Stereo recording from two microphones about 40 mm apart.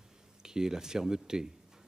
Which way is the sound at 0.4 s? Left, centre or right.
Centre.